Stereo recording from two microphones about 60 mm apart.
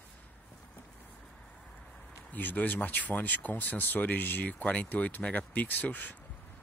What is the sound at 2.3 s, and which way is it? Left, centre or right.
Speech, left.